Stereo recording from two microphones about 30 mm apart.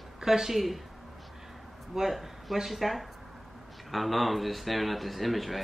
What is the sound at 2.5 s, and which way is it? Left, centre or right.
Speech, centre.